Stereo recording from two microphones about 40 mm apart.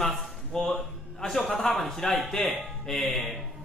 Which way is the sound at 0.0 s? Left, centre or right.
Centre.